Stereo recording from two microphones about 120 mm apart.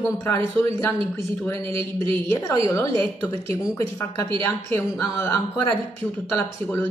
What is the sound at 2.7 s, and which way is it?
A woman's voice, 25° left (ahead or behind).